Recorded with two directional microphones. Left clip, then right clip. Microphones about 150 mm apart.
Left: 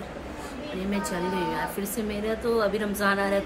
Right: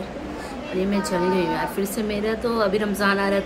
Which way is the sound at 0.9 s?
10° right (ahead or behind).